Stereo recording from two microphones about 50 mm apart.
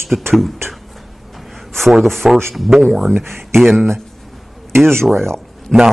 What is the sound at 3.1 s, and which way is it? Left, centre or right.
Speech, right.